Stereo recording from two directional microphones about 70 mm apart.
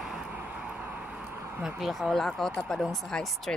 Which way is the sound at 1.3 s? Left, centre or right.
Right.